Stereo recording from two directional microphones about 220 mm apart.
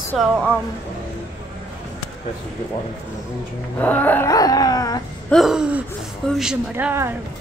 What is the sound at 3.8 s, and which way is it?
A woman's voice, 10° left (ahead or behind).